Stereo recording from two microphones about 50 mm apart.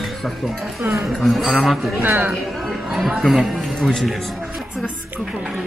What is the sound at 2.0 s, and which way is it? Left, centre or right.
Speech, right.